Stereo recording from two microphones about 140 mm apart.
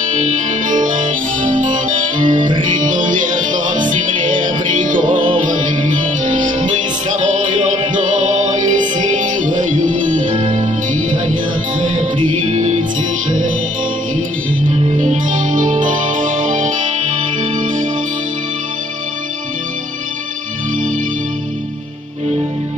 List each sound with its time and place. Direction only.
0.0 s music: 60° right (ahead or behind)
14.7 s music: 60° right (ahead or behind)